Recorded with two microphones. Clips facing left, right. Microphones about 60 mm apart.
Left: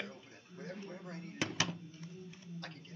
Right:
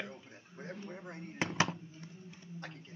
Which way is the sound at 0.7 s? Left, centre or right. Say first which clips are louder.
Right 1 dB; centre.